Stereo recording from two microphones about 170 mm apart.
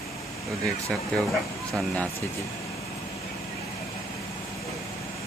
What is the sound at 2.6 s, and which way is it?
Vehicle, 20° left (ahead or behind).